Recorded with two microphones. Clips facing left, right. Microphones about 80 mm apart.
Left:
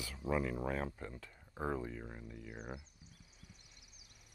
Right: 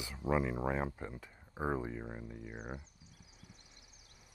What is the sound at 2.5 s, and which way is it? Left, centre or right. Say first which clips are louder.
Speech: right 1 dB; centre.